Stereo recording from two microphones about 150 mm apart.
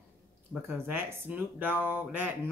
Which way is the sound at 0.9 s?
10° right (ahead or behind).